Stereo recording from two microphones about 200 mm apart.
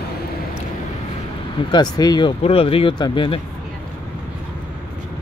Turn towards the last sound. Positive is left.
turn(degrees=25)  # may be behind; listen again after turning